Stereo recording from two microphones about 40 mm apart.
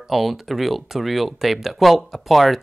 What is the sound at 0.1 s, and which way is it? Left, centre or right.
Speech, centre.